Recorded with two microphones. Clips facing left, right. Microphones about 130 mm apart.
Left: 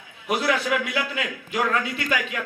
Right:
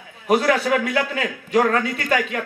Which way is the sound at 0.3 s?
40° right (ahead or behind).